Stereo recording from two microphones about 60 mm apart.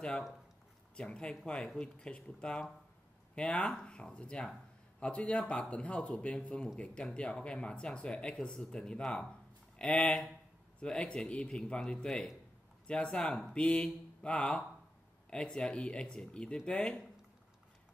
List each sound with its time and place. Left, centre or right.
0.9 s speech: centre